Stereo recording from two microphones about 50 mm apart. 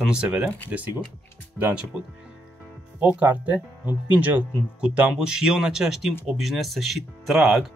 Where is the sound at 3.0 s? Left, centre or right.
Right.